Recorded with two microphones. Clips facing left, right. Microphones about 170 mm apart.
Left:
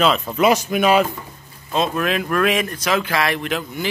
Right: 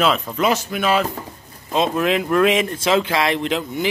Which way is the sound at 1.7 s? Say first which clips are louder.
Right 2 dB; 20° right (ahead or behind).